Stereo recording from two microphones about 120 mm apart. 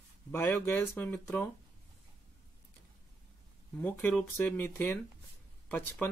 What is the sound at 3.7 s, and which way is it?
Speech, 15° left (ahead or behind).